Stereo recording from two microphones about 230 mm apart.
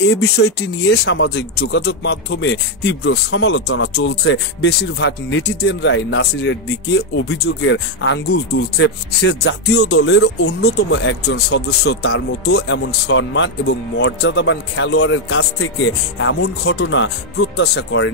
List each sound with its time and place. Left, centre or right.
0.4 s speech: left